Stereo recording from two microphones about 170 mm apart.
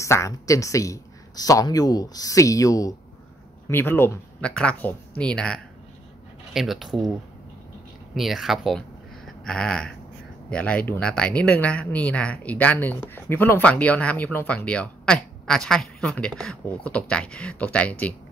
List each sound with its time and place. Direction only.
0.0 s speech: 15° left (ahead or behind); by 7.1 s centre (ahead or behind)
8.1 s speech: centre (ahead or behind)